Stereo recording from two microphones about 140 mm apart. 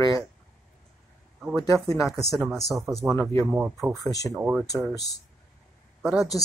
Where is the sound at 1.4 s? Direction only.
Centre (ahead or behind).